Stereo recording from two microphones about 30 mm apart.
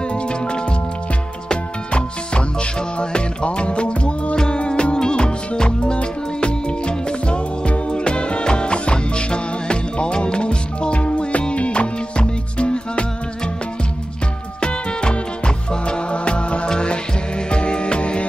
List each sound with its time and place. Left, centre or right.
0.1 s music: left
14.6 s music: left